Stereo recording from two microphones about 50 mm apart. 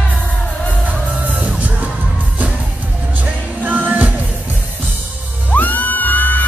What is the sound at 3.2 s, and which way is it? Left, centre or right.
Music, right.